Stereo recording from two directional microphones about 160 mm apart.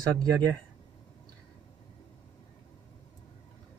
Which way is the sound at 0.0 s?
25° right (ahead or behind).